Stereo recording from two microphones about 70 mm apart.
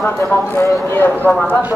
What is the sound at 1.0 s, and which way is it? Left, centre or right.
Speech, left.